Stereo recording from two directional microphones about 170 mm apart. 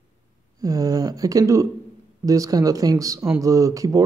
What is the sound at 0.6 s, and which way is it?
Speech, 20° right (ahead or behind).